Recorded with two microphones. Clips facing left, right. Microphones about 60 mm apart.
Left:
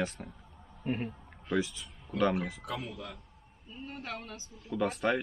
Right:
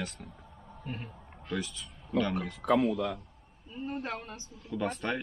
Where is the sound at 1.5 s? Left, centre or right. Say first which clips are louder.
Left 4 dB; centre.